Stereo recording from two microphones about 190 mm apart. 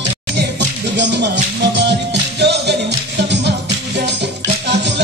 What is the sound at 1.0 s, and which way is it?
Music, 65° right (ahead or behind).